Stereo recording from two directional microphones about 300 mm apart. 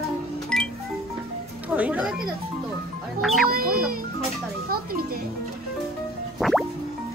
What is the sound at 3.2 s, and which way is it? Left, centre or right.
Speech, centre.